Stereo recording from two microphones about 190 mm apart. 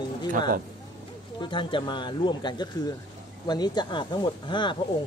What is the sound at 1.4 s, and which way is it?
Speech, 25° left (ahead or behind).